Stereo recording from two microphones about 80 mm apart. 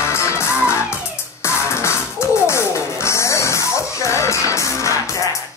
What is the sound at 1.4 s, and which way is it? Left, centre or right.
Music, left.